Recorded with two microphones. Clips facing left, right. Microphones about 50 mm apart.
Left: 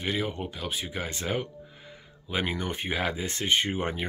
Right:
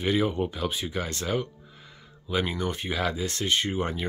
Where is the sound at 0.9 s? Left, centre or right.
Centre.